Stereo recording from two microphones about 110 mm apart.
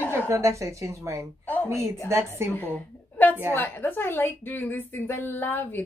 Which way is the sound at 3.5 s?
15° left (ahead or behind).